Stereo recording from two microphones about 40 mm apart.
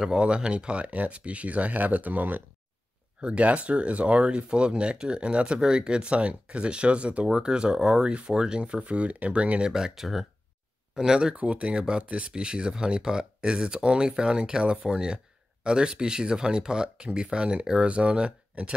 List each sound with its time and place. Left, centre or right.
0.1 s speech: right
3.2 s speech: right
9.7 s speech: centre
11.3 s speech: right